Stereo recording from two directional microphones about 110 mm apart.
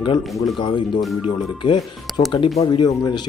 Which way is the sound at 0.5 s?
45° left (ahead or behind).